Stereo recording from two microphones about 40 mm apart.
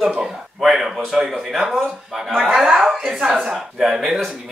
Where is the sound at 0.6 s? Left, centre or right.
Centre.